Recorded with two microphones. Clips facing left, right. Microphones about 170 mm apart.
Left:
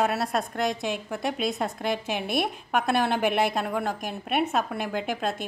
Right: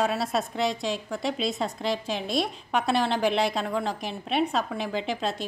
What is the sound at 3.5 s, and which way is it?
A woman's voice, 5° left (ahead or behind).